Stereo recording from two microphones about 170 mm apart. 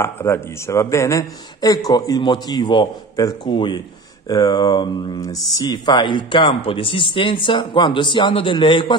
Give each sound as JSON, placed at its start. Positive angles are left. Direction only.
{"t": 0.0, "sound": "speech", "side_deg": 15}